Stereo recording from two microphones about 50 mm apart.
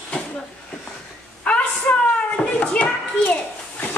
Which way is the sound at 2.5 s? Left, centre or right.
Left.